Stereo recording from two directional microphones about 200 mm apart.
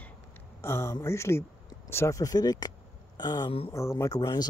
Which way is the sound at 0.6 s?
15° left (ahead or behind).